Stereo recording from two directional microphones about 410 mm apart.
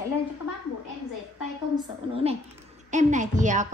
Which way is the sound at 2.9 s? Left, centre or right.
Centre.